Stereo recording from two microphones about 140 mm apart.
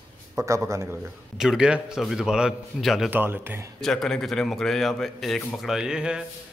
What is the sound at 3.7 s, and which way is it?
Speech, 5° left (ahead or behind).